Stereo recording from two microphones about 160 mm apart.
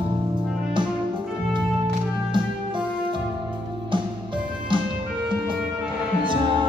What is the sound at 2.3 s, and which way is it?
Music, 30° right (ahead or behind).